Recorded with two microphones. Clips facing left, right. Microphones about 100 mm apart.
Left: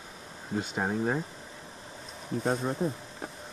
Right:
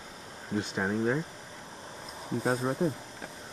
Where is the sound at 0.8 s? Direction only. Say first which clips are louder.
Right 1 dB; 25° left (ahead or behind).